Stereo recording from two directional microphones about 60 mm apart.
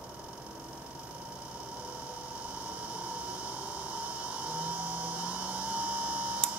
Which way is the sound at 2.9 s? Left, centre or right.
Right.